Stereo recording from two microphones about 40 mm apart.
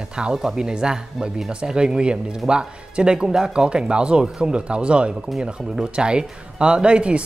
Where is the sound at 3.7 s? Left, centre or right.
Right.